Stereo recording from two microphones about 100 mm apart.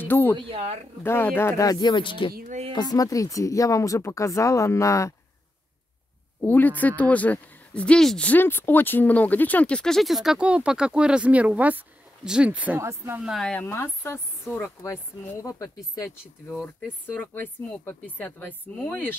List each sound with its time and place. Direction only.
0.0 s a woman's voice: 20° left (ahead or behind)
0.5 s speech: 90° right
1.0 s speech: 20° left (ahead or behind)
1.7 s speech: 45° left (ahead or behind)
2.7 s speech: 40° left (ahead or behind)
6.4 s speech: 20° left (ahead or behind)
8.3 s speech: 20° left (ahead or behind); by 12.8 s 15° right (ahead or behind)
12.8 s speech: 25° right (ahead or behind)
13.4 s speech: 10° left (ahead or behind)
13.7 s speech: 25° left (ahead or behind)
16.4 s speech: 15° left (ahead or behind)